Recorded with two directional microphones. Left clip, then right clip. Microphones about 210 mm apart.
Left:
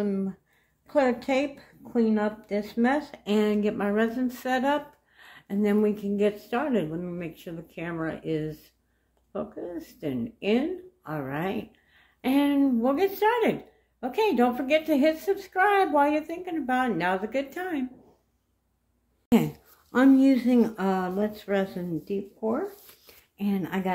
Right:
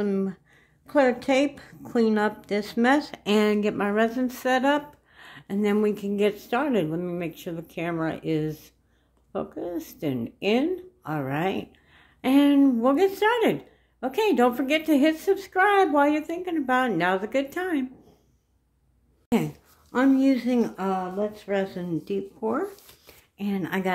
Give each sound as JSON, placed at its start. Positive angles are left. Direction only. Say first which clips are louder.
{"t": 0.0, "sound": "speech", "louder": "right 3 dB", "side_deg": -30}
{"t": 19.2, "sound": "speech", "louder": "left 2 dB", "side_deg": 0}
{"t": 22.0, "sound": "speech", "louder": "right 1 dB", "side_deg": -15}
{"t": 23.0, "sound": "a sound", "louder": "left 1 dB", "side_deg": -5}